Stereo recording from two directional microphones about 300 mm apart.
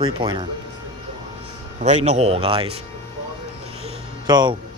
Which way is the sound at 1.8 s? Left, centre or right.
Right.